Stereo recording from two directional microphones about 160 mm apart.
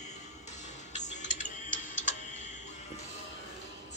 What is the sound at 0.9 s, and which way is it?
Music, 50° left (ahead or behind).